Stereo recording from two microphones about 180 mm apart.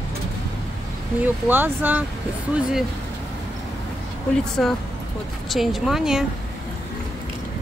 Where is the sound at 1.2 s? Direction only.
10° right (ahead or behind).